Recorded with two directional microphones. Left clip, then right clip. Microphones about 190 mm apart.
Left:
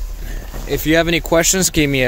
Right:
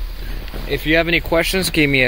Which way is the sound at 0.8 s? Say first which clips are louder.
Left 1 dB; 45° left (ahead or behind).